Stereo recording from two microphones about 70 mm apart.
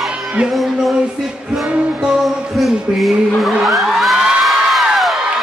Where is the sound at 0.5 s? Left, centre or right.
Centre.